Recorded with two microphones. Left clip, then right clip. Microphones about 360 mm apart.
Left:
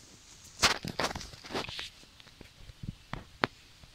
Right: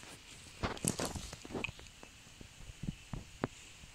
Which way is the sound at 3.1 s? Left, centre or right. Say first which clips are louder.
Left 10 dB; left.